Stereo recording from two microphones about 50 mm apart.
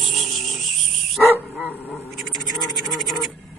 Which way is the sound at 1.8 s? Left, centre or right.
Left.